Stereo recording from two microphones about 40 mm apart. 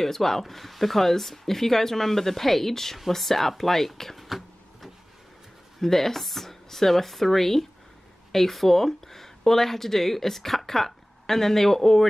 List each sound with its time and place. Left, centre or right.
0.0 s speech: centre
5.8 s speech: centre